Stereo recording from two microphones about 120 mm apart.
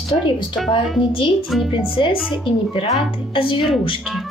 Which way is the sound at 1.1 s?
45° left (ahead or behind).